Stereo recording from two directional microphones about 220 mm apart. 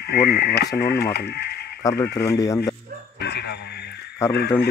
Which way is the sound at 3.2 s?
50° left (ahead or behind).